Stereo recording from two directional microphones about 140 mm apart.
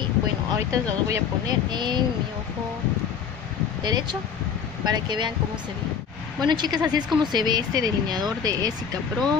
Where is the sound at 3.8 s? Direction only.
30° right (ahead or behind).